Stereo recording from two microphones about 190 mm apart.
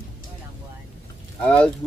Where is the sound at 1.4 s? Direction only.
5° left (ahead or behind).